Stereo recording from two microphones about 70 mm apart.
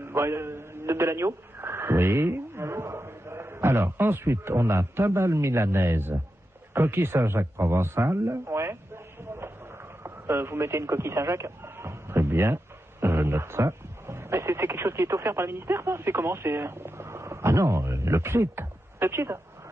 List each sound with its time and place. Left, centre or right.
0.0 s a man's voice: right
6.7 s a sound: right
10.0 s speech: right